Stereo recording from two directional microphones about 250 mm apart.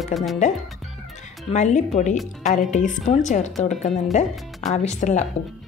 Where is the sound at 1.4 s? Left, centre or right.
Left.